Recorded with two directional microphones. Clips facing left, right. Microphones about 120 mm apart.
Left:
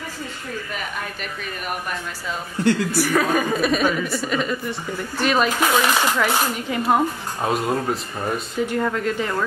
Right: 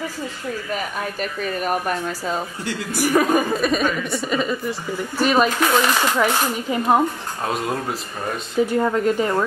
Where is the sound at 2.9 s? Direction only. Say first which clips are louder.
Right 2 dB; 15° right (ahead or behind).